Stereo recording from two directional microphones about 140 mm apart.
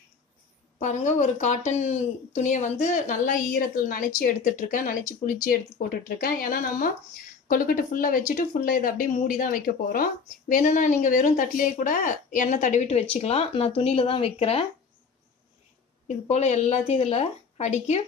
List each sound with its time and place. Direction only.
0.7 s a woman's voice: 60° left (ahead or behind); by 4.0 s 85° left
4.2 s speech: 70° left (ahead or behind)
5.2 s speech: 85° left
8.3 s speech: 65° left (ahead or behind); by 10.0 s 90° left
10.6 s a woman's voice: 60° left (ahead or behind); by 14.7 s 45° left (ahead or behind)
16.3 s a woman's voice: 50° left (ahead or behind)